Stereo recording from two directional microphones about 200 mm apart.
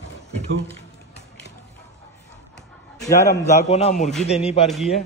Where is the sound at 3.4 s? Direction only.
35° left (ahead or behind).